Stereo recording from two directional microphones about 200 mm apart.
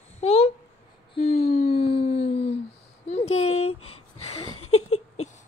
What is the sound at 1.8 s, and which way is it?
Howl, 30° left (ahead or behind).